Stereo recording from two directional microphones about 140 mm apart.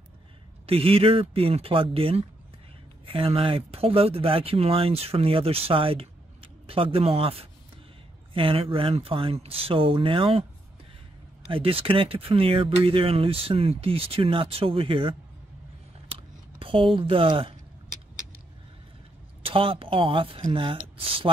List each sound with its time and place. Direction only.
0.7 s speech: 45° right (ahead or behind)
11.4 s speech: 40° right (ahead or behind)
16.1 s a sound: 40° right (ahead or behind)
19.4 s speech: 40° right (ahead or behind)